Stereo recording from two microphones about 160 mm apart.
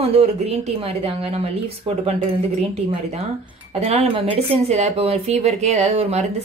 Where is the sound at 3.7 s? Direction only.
40° right (ahead or behind).